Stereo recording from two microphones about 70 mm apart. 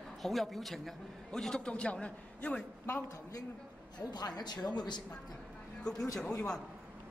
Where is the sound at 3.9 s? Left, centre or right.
Left.